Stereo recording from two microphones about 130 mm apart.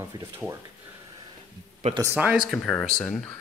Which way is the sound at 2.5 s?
5° left (ahead or behind).